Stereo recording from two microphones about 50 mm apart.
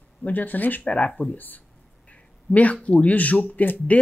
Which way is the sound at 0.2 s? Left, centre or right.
Left.